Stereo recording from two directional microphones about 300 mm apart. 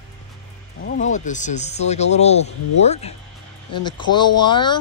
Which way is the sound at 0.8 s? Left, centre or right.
Left.